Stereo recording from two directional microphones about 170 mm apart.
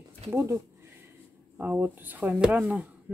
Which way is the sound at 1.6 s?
10° right (ahead or behind).